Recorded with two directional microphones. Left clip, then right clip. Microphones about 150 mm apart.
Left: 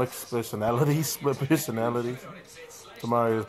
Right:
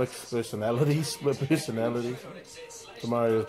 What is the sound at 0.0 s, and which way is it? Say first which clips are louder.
Speech: left 1 dB; 25° left (ahead or behind).